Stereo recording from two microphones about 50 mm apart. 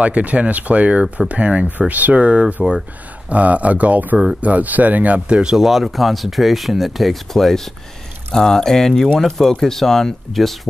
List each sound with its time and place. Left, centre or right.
0.0 s speech: right
5.4 s speech: centre